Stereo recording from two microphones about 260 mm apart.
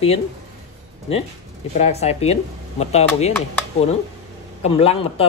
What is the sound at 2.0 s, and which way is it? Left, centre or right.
Speech, left.